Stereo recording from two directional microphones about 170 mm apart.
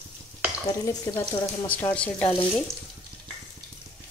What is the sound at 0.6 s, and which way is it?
Stir, 20° left (ahead or behind).